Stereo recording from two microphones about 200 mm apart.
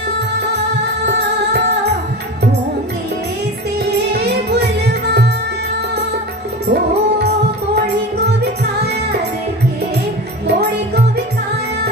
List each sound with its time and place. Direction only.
4.1 s music: 55° right (ahead or behind)
6.7 s music: 55° right (ahead or behind)